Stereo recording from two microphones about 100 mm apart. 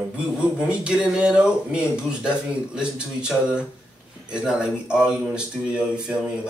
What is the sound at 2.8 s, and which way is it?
Speech, 10° right (ahead or behind).